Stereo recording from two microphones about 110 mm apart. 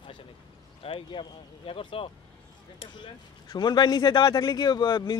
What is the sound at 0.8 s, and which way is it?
Speech, 50° left (ahead or behind).